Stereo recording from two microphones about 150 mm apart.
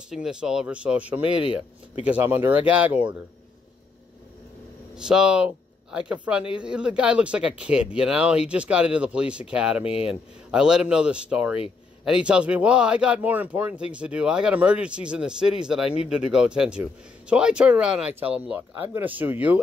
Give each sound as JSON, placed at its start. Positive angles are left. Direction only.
{"t": 0.1, "sound": "speech", "side_deg": -5}
{"t": 4.9, "sound": "speech", "side_deg": -5}
{"t": 9.8, "sound": "speech", "side_deg": 40}
{"t": 10.5, "sound": "speech", "side_deg": -5}